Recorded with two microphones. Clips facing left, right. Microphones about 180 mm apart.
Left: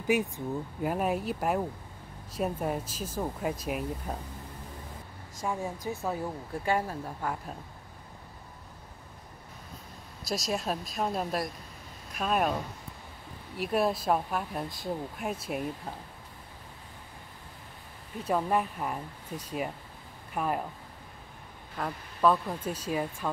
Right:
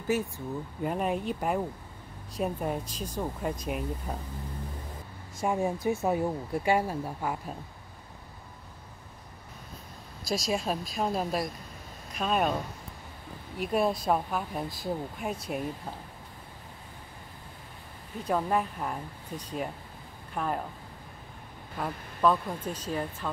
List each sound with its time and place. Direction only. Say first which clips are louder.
0.0 s speech: left 2 dB; 15° left (ahead or behind)
0.8 s speech: even; 5° left (ahead or behind)
5.4 s speech: right 5 dB; 20° right (ahead or behind)
10.2 s speech: right 2 dB; centre (ahead or behind)
13.6 s speech: even; centre (ahead or behind)
18.2 s speech: even; centre (ahead or behind)
21.7 s speech: right 1 dB; centre (ahead or behind)